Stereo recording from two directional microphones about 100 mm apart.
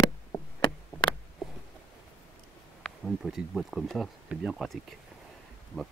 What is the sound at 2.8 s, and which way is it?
Speech, centre (ahead or behind).